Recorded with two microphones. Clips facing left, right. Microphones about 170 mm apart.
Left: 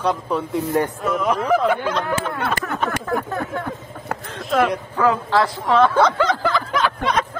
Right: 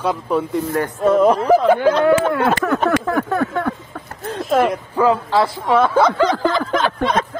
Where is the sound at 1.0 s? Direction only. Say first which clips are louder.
Right 12 dB; 30° right (ahead or behind).